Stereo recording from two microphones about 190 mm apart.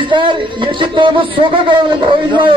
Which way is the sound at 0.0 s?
25° right (ahead or behind).